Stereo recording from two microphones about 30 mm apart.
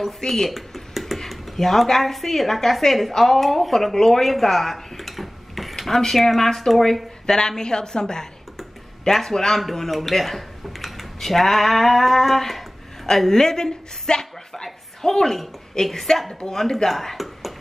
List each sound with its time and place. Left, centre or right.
0.3 s a sound: centre
1.3 s speech: centre
4.3 s a sound: centre
6.1 s speech: centre
7.2 s a woman's voice: left
9.0 s speech: centre
9.9 s speech: centre; by 14.2 s left
14.5 s a sound: centre
15.8 s speech: centre